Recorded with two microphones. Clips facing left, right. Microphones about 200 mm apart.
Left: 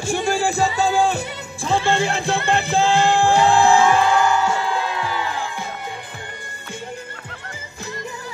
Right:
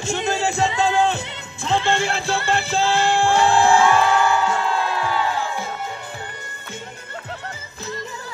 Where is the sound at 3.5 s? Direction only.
55° left (ahead or behind).